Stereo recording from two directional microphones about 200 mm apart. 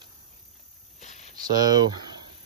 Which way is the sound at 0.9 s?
35° left (ahead or behind).